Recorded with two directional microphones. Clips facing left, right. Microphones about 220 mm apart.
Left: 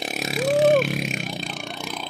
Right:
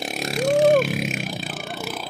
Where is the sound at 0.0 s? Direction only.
Centre (ahead or behind).